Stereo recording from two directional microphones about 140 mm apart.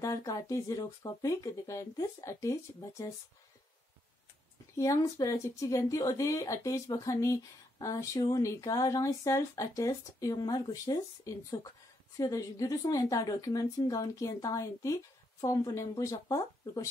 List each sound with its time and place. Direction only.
0.0 s speech: 25° left (ahead or behind)
4.7 s speech: 25° left (ahead or behind)